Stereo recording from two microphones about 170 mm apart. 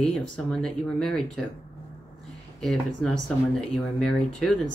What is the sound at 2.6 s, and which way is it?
Speech, centre (ahead or behind).